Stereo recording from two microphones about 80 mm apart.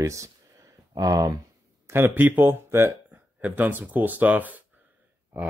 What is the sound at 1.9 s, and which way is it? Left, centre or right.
Speech, right.